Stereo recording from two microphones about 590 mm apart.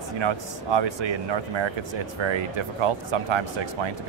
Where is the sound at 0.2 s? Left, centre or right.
Right.